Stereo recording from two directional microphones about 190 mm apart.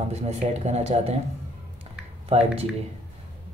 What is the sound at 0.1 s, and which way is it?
Speech, 35° right (ahead or behind).